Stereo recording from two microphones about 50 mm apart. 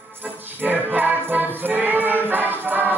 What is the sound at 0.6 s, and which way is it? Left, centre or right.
Music, right.